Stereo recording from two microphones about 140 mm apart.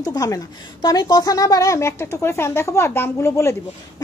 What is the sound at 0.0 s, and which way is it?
A woman's voice, 25° left (ahead or behind).